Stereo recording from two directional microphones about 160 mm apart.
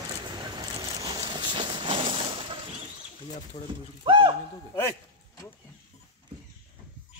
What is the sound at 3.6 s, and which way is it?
Speech, 45° left (ahead or behind).